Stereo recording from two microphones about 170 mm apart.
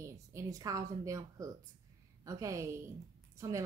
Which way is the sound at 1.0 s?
20° right (ahead or behind).